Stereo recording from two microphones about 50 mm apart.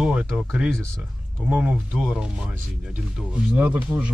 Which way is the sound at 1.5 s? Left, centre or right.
Right.